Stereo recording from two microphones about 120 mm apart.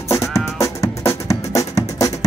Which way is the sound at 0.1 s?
25° left (ahead or behind).